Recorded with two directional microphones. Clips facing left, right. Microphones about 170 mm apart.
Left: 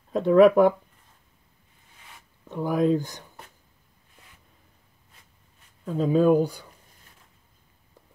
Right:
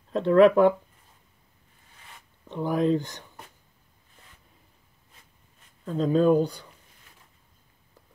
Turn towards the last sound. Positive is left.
turn(degrees=10)  # may be behind; listen again after turning